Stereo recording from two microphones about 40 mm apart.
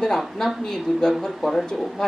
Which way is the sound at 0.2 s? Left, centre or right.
Centre.